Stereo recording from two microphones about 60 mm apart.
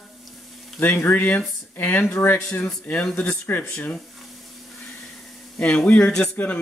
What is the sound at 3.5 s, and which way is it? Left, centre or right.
Speech, left.